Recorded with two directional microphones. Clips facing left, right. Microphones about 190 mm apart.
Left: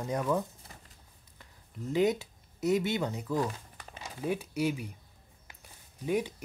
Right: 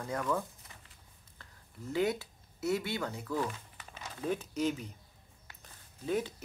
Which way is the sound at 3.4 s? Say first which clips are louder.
Left 3 dB; 35° left (ahead or behind).